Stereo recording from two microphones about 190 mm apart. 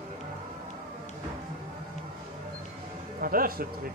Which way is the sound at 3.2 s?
50° right (ahead or behind).